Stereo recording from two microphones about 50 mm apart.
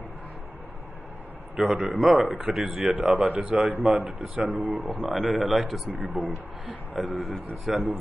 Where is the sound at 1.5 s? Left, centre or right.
Right.